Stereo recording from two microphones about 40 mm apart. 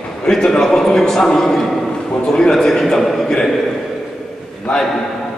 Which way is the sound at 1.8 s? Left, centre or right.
Left.